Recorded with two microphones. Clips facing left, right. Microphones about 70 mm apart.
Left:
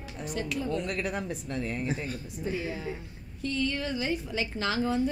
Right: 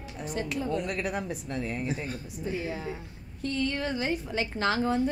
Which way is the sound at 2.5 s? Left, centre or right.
Right.